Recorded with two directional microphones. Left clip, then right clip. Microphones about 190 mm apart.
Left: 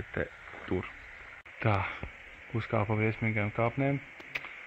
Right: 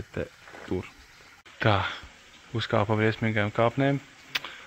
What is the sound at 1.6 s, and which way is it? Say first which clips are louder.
Speech: right 6 dB; 15° right (ahead or behind).